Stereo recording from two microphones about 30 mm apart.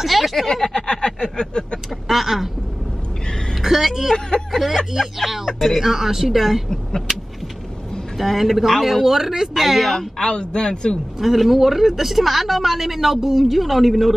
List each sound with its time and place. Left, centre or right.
0.0 s a woman's voice: centre
0.7 s a sound: left
2.0 s speech: centre
3.6 s a woman's voice: centre
5.8 s speech: centre
7.1 s vehicle: centre
8.2 s a woman's voice: centre
9.9 s a sound: centre
10.3 s a sound: left
11.1 s a woman's voice: centre